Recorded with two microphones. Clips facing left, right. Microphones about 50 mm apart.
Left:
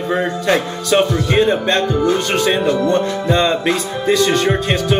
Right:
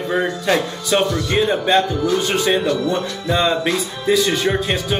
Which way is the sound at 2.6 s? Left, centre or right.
Left.